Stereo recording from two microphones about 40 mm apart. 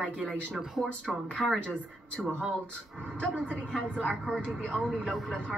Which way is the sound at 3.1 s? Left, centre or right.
Left.